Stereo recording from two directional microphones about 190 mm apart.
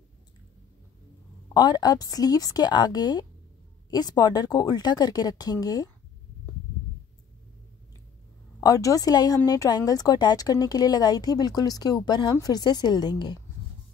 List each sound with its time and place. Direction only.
1.5 s speech: 20° left (ahead or behind)
8.5 s speech: 20° left (ahead or behind)